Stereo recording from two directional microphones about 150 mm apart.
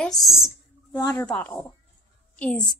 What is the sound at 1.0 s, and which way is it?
A woman's voice, 20° left (ahead or behind).